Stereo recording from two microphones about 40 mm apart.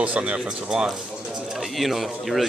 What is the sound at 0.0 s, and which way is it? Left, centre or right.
Speech, right.